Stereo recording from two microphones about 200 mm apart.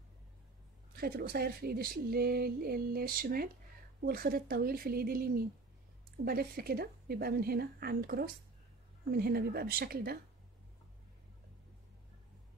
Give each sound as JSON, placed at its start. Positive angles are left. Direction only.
{"t": 0.9, "sound": "speech", "side_deg": -50}